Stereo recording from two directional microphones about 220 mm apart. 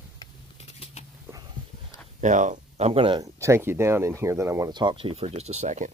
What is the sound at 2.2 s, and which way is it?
Speech, 35° right (ahead or behind).